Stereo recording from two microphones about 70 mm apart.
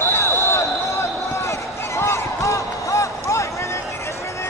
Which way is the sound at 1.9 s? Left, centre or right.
Left.